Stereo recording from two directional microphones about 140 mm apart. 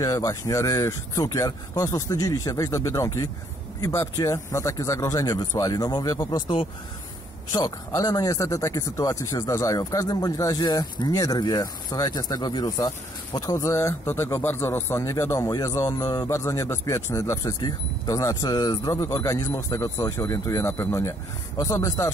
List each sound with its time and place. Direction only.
0.0 s speech: 25° left (ahead or behind)